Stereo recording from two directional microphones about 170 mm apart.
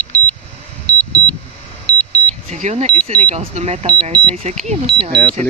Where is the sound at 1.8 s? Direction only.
10° left (ahead or behind).